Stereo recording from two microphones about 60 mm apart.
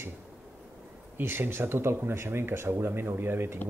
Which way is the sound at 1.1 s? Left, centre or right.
Right.